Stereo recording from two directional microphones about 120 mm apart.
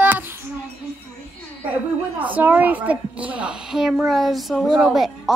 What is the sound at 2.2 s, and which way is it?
A woman's voice, 15° right (ahead or behind).